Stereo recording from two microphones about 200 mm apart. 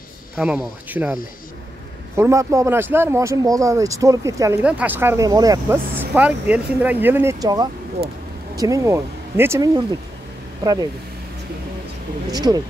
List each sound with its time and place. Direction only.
0.4 s speech: 5° right (ahead or behind)
2.1 s speech: 15° right (ahead or behind)
12.3 s speech: 20° right (ahead or behind)